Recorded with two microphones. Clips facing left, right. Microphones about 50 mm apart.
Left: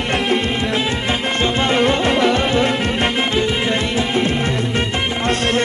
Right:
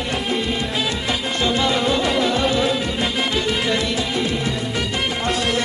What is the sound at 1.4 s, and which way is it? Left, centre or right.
Music, left.